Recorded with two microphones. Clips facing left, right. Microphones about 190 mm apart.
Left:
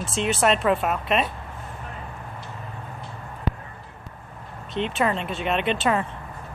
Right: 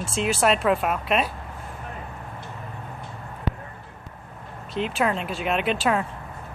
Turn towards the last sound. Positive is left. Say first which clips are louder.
# even
turn(degrees=0)  # may be behind; listen again after turning